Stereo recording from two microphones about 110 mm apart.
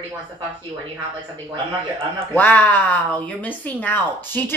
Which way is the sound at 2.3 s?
15° left (ahead or behind).